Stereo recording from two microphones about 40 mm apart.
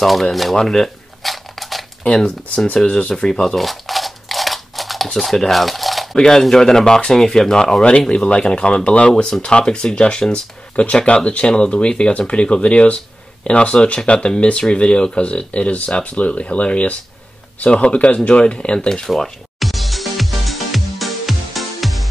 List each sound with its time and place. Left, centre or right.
0.0 s speech: centre
0.6 s speech: centre
1.2 s a sound: centre
2.2 s speech: left
3.5 s a sound: centre
6.1 s speech: centre
8.1 s speech: left
19.0 s speech: centre
19.6 s music: centre